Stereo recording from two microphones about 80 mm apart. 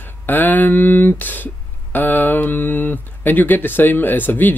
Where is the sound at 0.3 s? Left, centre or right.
Left.